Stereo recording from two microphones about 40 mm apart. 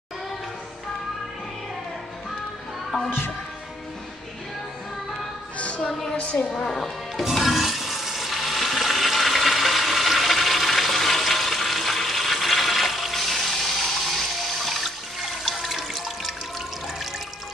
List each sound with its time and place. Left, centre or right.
6.1 s a woman's voice: left
6.7 s speech: centre
7.2 s toilet flush: centre